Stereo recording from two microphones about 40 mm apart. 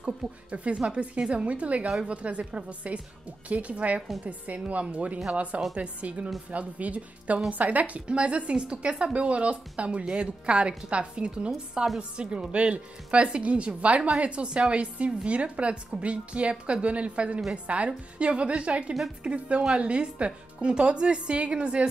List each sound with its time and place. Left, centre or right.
0.0 s a woman's voice: right